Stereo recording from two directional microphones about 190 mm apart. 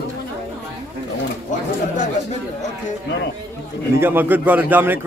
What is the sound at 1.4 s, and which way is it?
Speech, 40° left (ahead or behind).